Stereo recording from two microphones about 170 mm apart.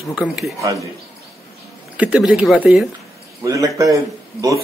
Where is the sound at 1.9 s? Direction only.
5° right (ahead or behind).